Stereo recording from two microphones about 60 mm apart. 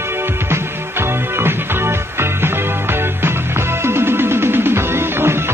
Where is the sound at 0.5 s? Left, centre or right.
Right.